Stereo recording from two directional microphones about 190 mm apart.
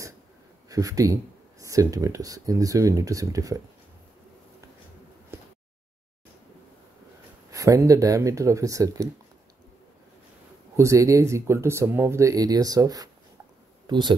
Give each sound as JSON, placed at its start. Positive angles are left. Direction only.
{"t": 0.7, "sound": "speech", "side_deg": -20}
{"t": 7.5, "sound": "speech", "side_deg": -15}
{"t": 10.8, "sound": "speech", "side_deg": -15}